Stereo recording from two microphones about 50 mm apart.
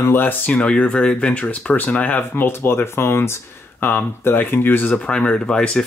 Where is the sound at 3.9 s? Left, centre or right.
Left.